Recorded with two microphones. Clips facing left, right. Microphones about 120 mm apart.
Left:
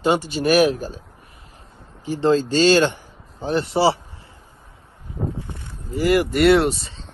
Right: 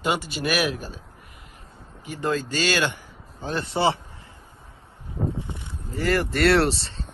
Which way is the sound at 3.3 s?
15° left (ahead or behind).